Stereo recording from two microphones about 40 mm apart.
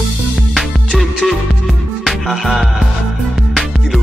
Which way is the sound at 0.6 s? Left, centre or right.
Centre.